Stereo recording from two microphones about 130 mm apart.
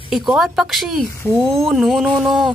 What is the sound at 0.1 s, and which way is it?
Speech, centre (ahead or behind).